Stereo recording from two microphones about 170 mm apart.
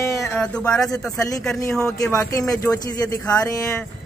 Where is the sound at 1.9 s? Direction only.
20° left (ahead or behind).